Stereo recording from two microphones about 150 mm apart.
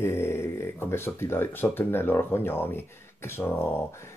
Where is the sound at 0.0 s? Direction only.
15° left (ahead or behind).